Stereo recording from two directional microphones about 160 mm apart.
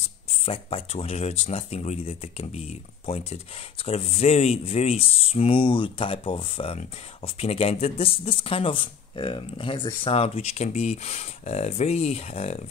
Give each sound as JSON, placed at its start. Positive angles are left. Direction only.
{"t": 0.3, "sound": "speech", "side_deg": 40}